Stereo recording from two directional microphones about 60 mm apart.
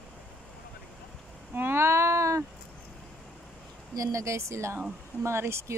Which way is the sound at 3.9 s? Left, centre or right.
Right.